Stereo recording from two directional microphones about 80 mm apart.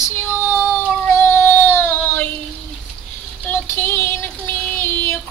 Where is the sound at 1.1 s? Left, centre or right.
Left.